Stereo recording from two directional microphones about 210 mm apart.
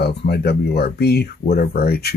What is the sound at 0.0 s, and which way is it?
Speech, 50° left (ahead or behind).